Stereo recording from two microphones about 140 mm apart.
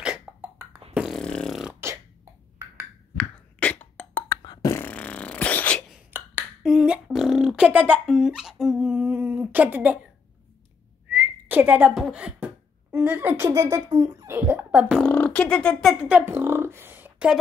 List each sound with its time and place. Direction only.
0.0 s cough: 10° right (ahead or behind)
0.9 s beatboxing: centre (ahead or behind)
3.2 s beatboxing: 10° left (ahead or behind)
4.4 s beatboxing: 30° left (ahead or behind); by 5.9 s 10° left (ahead or behind)
6.1 s finger snapping: 15° right (ahead or behind)
6.6 s a sound: 5° right (ahead or behind)
11.1 s whistling: 15° right (ahead or behind)
12.9 s a woman's voice: 15° right (ahead or behind)
15.0 s speech: 10° left (ahead or behind); by 17.4 s 10° right (ahead or behind)